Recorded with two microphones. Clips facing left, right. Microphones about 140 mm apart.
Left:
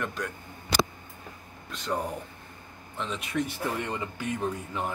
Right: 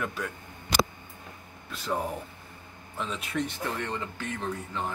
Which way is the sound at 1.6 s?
5° right (ahead or behind).